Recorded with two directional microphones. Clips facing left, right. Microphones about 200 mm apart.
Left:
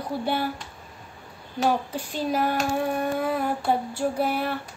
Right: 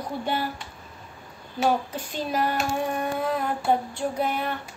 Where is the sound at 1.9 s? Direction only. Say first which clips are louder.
Left 2 dB; 10° left (ahead or behind).